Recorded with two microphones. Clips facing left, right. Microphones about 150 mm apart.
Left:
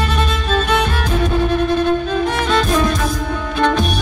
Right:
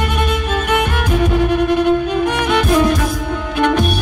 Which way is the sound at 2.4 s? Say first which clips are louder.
Right 4 dB; 15° right (ahead or behind).